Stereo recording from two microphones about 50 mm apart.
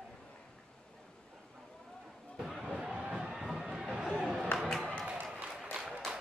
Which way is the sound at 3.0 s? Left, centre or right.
Centre.